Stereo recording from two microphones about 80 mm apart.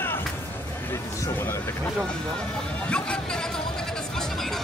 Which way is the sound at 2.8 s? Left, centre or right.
Centre.